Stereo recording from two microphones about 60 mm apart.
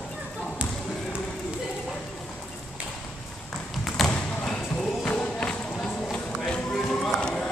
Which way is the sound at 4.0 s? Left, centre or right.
Centre.